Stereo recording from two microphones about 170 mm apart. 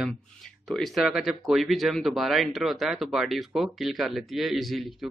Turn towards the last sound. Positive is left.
turn(degrees=0)  # may be behind; listen again after turning